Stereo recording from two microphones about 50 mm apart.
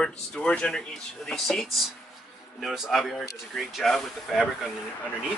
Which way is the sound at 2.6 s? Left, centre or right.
Centre.